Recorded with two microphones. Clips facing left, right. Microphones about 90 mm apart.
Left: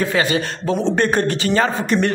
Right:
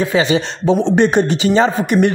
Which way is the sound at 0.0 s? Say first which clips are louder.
Right 3 dB; 20° right (ahead or behind).